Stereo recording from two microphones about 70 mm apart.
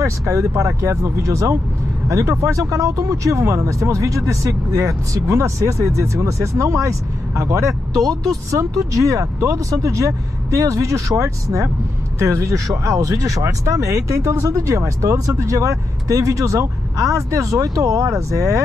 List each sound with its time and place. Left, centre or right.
0.0 s speech: right